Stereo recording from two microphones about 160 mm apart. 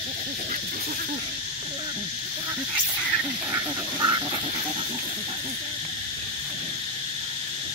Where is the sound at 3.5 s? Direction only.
25° right (ahead or behind).